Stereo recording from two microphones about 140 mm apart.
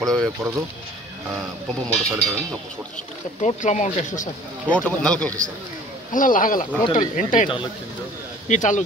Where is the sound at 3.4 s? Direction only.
60° left (ahead or behind).